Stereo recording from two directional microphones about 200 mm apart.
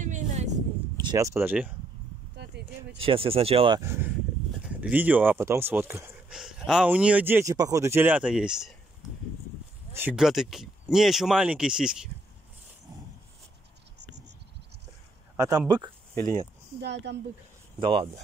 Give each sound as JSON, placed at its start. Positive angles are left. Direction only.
{"t": 0.0, "sound": "a sound", "side_deg": -35}
{"t": 1.0, "sound": "speech", "side_deg": -15}
{"t": 2.3, "sound": "a sound", "side_deg": -55}
{"t": 3.0, "sound": "speech", "side_deg": -30}
{"t": 3.8, "sound": "speech", "side_deg": -15}
{"t": 9.9, "sound": "speech", "side_deg": -5}
{"t": 15.3, "sound": "speech", "side_deg": -20}
{"t": 16.8, "sound": "speech", "side_deg": -60}
{"t": 17.7, "sound": "speech", "side_deg": -25}